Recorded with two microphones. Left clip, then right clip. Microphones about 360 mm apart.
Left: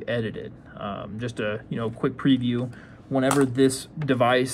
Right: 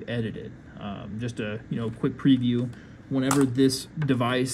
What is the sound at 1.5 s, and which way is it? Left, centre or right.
Speech, centre.